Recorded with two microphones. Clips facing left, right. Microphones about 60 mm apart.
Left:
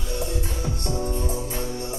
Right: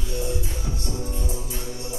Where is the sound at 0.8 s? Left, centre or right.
Left.